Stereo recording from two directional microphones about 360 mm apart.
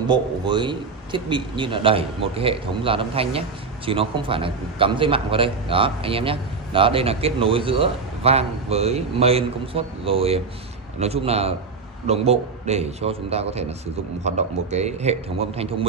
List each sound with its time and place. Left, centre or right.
0.1 s a man's voice: centre